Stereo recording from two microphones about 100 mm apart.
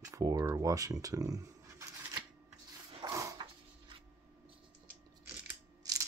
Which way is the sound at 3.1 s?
35° right (ahead or behind).